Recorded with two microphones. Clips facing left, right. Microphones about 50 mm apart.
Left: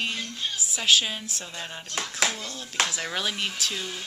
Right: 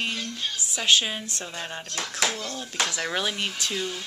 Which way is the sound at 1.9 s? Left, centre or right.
Centre.